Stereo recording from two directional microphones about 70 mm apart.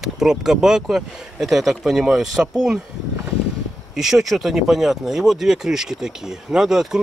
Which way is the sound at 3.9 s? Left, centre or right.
Centre.